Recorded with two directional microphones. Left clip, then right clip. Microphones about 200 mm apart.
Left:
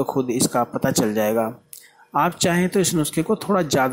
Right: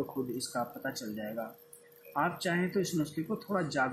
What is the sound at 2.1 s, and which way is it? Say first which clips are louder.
Speech: left 12 dB; 35° left (ahead or behind).